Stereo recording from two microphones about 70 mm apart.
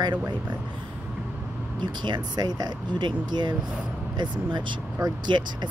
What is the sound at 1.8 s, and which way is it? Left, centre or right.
Speech, right.